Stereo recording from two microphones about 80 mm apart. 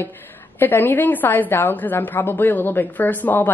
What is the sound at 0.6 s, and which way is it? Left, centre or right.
A woman's voice, left.